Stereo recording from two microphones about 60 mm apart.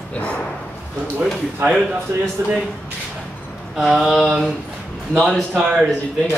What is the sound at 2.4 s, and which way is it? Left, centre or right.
Speech, right.